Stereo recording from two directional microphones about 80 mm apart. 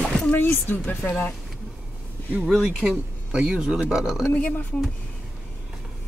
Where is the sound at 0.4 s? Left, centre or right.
Left.